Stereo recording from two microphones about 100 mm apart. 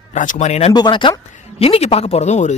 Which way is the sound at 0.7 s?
50° left (ahead or behind).